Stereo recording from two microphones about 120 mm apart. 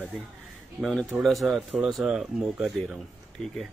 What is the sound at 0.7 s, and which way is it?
Speech, centre (ahead or behind).